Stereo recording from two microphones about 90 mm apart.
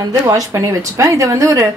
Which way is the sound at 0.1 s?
40° right (ahead or behind).